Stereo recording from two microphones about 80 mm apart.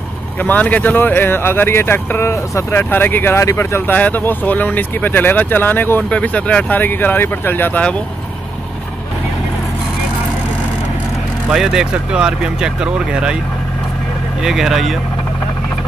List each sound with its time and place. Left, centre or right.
0.4 s speech: centre
11.5 s speech: centre
14.4 s speech: centre